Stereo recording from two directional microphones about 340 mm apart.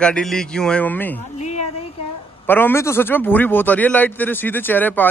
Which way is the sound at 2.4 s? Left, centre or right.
Centre.